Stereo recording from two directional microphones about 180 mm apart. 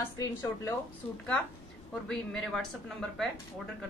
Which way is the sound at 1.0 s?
30° left (ahead or behind).